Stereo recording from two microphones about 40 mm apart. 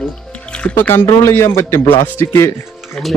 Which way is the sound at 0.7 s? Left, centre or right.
Left.